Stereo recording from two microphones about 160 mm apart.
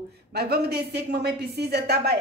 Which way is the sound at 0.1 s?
85° right.